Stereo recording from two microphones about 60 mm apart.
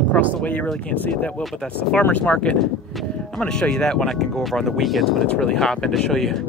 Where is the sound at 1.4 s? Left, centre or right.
Centre.